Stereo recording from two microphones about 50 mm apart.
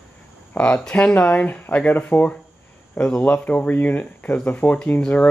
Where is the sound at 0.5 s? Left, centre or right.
Left.